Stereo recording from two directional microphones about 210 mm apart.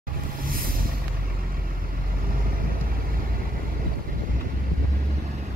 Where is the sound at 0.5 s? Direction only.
45° right (ahead or behind).